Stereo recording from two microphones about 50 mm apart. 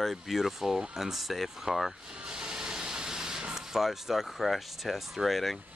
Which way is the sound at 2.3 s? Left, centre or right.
Centre.